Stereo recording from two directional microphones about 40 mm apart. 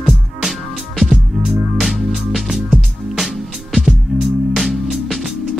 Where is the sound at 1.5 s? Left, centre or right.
Centre.